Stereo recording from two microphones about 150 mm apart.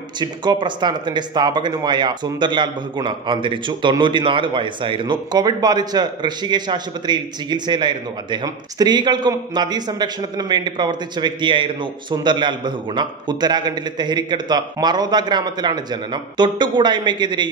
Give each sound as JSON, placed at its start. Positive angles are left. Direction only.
{"t": 0.2, "sound": "speech", "side_deg": -30}